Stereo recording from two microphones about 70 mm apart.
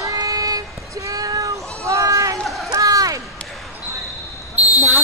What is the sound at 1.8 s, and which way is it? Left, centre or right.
Run, right.